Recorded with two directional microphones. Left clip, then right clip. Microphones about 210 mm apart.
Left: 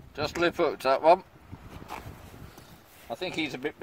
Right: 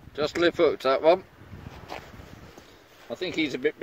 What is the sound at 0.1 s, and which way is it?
Speech, 30° left (ahead or behind).